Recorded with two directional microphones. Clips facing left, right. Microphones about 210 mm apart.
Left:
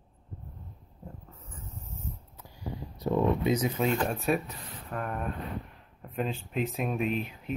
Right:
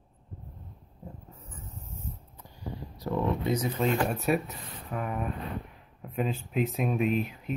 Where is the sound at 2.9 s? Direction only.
20° left (ahead or behind).